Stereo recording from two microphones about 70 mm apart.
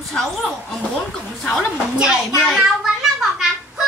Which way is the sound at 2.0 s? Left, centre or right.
Centre.